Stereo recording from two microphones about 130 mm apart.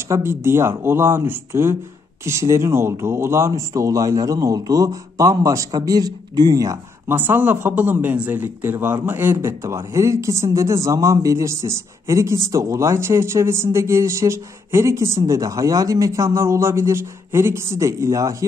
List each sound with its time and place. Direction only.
0.1 s speech: 20° right (ahead or behind)